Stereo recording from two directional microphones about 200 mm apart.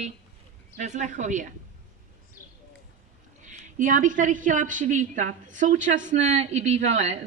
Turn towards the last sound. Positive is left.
turn(degrees=-35)  # may be behind; listen again after turning